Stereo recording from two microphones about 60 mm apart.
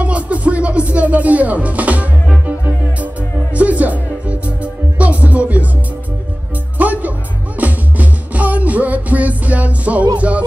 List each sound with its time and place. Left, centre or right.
0.0 s music: right
6.8 s music: right